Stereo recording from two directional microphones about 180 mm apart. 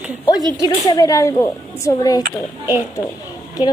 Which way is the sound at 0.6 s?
20° left (ahead or behind).